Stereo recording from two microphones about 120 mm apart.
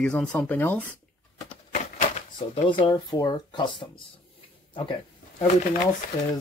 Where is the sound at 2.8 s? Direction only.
35° left (ahead or behind).